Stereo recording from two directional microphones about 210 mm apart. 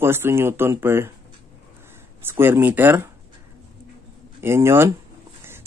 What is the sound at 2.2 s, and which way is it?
Speech, 10° right (ahead or behind).